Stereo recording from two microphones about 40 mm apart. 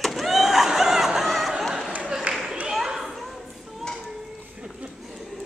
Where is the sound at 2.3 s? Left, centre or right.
Right.